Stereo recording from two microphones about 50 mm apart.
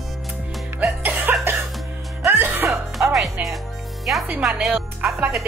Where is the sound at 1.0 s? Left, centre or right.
Right.